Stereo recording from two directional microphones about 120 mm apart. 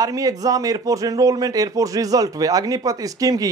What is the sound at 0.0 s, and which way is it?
A man's voice, 30° right (ahead or behind).